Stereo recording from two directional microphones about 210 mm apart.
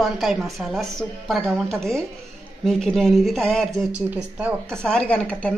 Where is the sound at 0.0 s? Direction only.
Centre (ahead or behind).